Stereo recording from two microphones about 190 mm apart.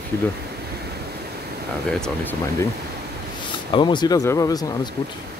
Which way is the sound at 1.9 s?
10° left (ahead or behind).